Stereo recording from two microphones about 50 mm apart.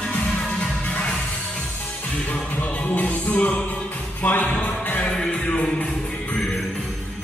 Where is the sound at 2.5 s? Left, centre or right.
Left.